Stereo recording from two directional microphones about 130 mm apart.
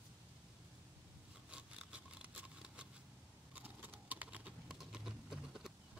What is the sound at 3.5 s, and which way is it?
Typing, 10° right (ahead or behind).